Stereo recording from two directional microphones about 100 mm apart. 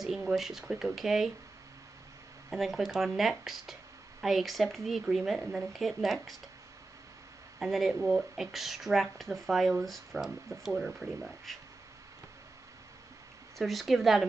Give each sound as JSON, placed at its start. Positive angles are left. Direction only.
{"t": 0.0, "sound": "speech", "side_deg": 0}
{"t": 2.5, "sound": "speech", "side_deg": 0}
{"t": 7.5, "sound": "speech", "side_deg": 0}
{"t": 13.6, "sound": "speech", "side_deg": 0}